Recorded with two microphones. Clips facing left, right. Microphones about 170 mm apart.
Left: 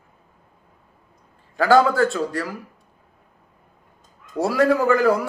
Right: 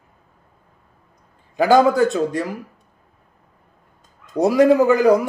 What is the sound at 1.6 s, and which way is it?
A man's voice, 15° right (ahead or behind).